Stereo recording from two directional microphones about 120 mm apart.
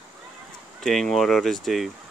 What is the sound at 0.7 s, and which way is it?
Speech, 5° left (ahead or behind).